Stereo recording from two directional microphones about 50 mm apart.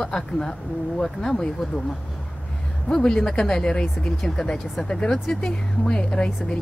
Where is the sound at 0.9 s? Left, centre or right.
Centre.